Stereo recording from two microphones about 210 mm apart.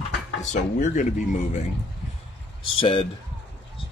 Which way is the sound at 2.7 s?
25° left (ahead or behind).